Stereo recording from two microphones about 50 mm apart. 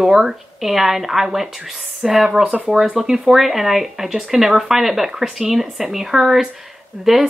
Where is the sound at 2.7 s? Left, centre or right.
Centre.